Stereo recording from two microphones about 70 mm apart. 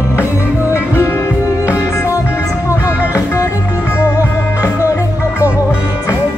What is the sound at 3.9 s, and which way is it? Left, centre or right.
Music, left.